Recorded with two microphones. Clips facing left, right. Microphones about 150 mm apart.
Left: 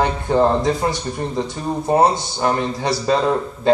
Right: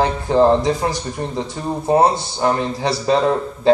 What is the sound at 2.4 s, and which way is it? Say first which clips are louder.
Speech: right 1 dB; 20° right (ahead or behind).